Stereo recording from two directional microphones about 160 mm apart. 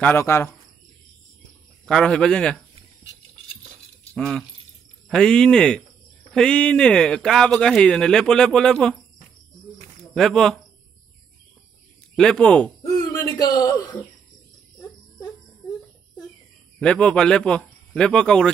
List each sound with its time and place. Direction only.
0.0 s speech: 15° left (ahead or behind)
1.9 s speech: 5° left (ahead or behind)
4.1 s speech: 5° left (ahead or behind)
10.1 s speech: 5° left (ahead or behind)
12.2 s speech: 5° left (ahead or behind)
12.8 s hoot: 25° left (ahead or behind)
16.8 s speech: 5° left (ahead or behind)